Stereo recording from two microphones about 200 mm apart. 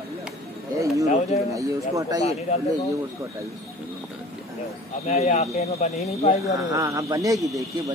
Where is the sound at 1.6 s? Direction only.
15° right (ahead or behind).